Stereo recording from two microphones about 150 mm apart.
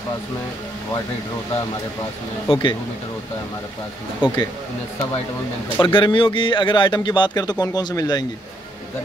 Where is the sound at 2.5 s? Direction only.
30° left (ahead or behind).